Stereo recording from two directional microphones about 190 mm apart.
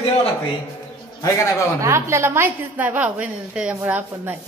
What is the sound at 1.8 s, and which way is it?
A woman's voice, 15° right (ahead or behind).